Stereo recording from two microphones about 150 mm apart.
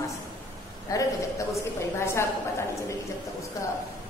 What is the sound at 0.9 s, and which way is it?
Speech, 20° left (ahead or behind).